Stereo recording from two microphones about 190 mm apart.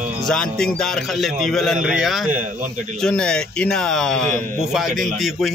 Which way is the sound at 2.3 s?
45° right (ahead or behind).